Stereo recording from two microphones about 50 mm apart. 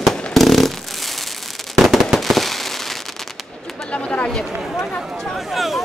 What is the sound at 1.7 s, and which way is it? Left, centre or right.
Fireworks, centre.